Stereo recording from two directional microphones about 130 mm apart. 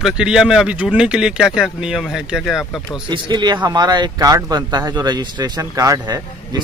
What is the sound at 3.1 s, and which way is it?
Speech, 35° right (ahead or behind).